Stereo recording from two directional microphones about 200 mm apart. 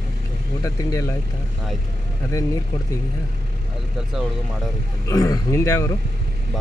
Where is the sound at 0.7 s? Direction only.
15° left (ahead or behind).